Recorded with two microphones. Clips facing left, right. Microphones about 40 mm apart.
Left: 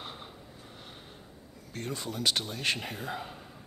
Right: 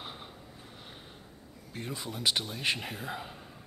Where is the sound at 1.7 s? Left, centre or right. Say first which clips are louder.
Left 2 dB; centre.